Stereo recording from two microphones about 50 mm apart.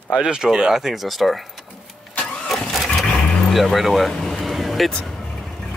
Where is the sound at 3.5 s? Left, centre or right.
Centre.